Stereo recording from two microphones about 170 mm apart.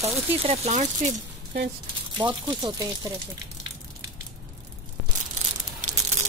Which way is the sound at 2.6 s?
25° right (ahead or behind).